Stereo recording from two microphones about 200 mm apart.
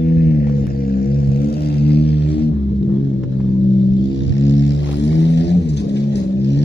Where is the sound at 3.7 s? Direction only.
65° left (ahead or behind).